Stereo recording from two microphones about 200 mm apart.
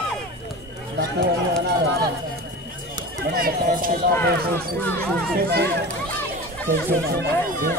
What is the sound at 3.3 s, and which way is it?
Speech, 45° right (ahead or behind).